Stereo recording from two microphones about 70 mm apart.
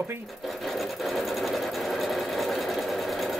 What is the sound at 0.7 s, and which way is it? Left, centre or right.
Sewing machine, centre.